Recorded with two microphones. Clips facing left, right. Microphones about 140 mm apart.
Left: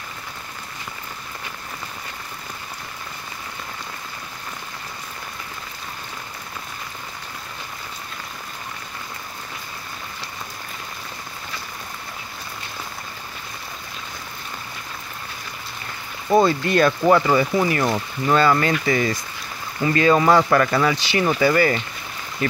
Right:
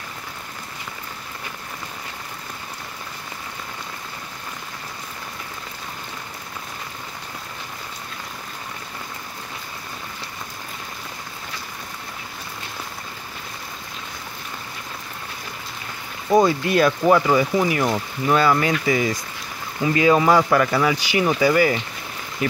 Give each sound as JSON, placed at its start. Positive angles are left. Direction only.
{"t": 16.3, "sound": "speech", "side_deg": -10}